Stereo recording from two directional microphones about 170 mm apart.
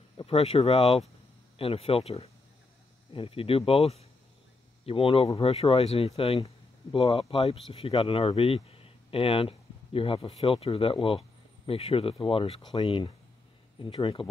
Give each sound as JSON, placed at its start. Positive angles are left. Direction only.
{"t": 0.2, "sound": "speech", "side_deg": 35}